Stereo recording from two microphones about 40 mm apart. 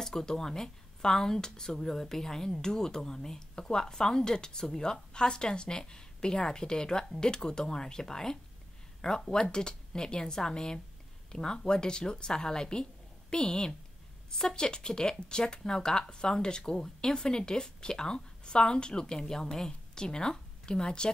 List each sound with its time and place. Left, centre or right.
0.0 s a woman's voice: centre